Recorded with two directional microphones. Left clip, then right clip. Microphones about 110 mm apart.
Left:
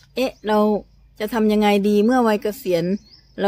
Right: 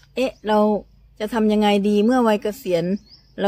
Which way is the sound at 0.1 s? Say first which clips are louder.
Even; 20° left (ahead or behind).